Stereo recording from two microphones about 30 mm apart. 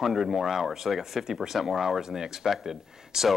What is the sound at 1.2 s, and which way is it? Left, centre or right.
Speech, centre.